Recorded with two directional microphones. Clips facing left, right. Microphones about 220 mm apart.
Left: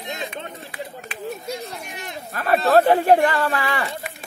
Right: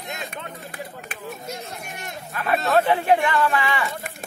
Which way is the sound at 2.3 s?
40° left (ahead or behind).